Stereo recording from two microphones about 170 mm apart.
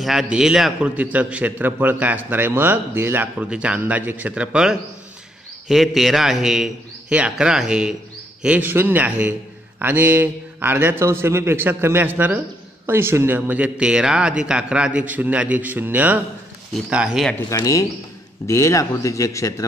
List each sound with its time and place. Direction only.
0.0 s a man's voice: centre (ahead or behind)
17.5 s a man's voice: 20° left (ahead or behind)